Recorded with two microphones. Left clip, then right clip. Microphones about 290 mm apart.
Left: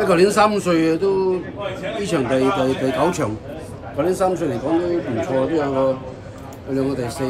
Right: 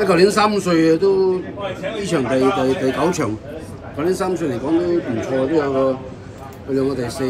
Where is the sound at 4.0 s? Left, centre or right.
Centre.